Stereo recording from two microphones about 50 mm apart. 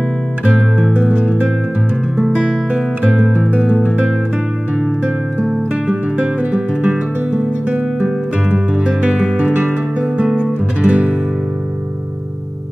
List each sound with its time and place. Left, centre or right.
0.5 s music: centre
0.9 s music: right
6.1 s music: right
8.5 s music: right
10.3 s music: right